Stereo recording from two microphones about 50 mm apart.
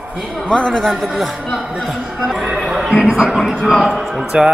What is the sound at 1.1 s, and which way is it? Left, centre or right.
Speech, centre.